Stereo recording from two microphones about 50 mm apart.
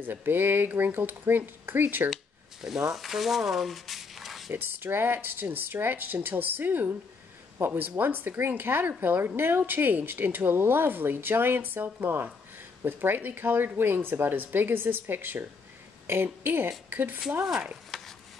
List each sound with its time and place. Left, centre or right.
0.0 s a woman's voice: right
2.6 s speech: centre
4.5 s a woman's voice: right
17.9 s a sound: centre